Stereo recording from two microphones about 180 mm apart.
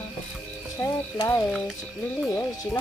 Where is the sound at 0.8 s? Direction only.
20° left (ahead or behind).